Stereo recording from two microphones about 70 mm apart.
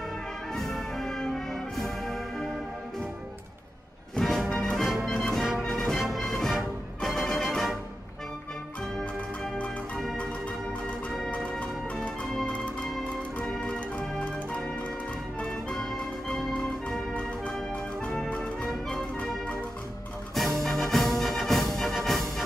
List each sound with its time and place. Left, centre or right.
0.6 s brass instrument: centre
4.2 s music: centre
5.9 s music: centre
11.2 s music: centre
13.4 s organ: centre
15.4 s music: centre
20.3 s music: centre